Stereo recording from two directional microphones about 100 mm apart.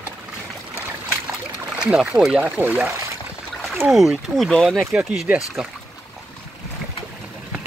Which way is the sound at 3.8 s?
Centre (ahead or behind).